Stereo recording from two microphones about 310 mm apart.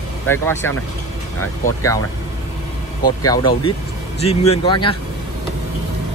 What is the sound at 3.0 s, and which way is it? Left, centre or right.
Speech, centre.